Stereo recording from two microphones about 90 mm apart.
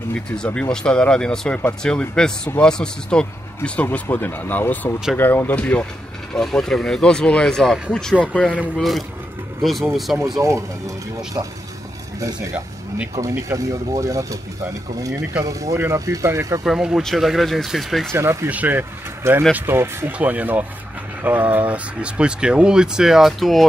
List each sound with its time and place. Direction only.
0.6 s speech: 10° left (ahead or behind)
6.3 s speech: 5° left (ahead or behind)
11.4 s speech: 25° right (ahead or behind)
13.3 s speech: 35° right (ahead or behind)
16.6 s speech: 5° right (ahead or behind)
18.1 s speech: 30° right (ahead or behind)
18.5 s speech: 20° right (ahead or behind); by 23.6 s centre (ahead or behind)